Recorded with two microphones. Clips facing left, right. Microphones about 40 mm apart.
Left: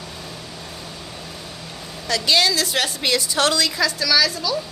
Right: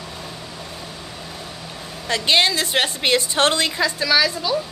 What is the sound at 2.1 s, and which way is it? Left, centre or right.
A woman's voice, right.